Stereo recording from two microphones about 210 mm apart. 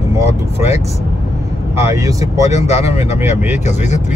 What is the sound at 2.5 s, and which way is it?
Speech, 30° left (ahead or behind).